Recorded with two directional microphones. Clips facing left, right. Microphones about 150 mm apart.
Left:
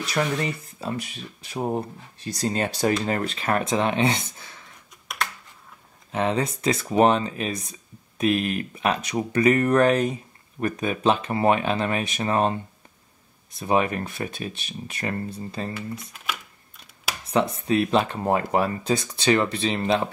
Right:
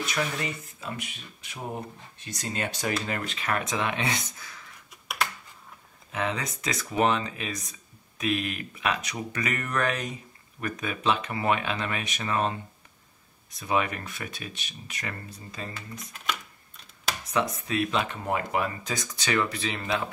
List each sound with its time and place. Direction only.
0.0 s speech: 35° left (ahead or behind)
6.1 s speech: 30° left (ahead or behind)
13.6 s speech: 30° left (ahead or behind)
17.2 s speech: 30° left (ahead or behind)